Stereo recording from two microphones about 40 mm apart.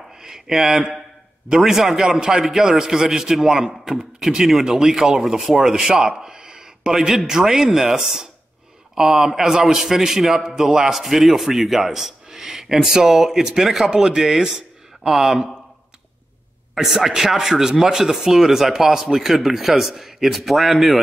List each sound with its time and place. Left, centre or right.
0.2 s speech: centre
5.9 s a sound: centre
6.9 s speech: centre
16.7 s speech: centre